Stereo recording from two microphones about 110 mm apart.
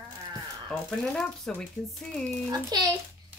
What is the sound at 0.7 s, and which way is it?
Speech, 5° left (ahead or behind).